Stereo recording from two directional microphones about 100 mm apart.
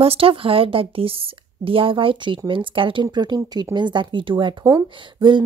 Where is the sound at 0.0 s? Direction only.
70° right (ahead or behind).